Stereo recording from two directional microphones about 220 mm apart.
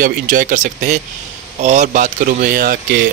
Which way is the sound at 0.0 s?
35° right (ahead or behind).